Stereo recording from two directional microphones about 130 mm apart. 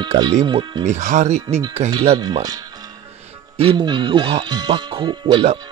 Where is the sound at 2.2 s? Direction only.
30° right (ahead or behind).